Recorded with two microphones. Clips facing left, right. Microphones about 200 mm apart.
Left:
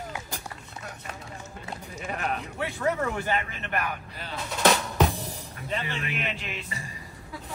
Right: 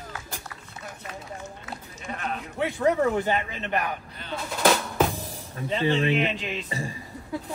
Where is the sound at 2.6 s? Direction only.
20° right (ahead or behind).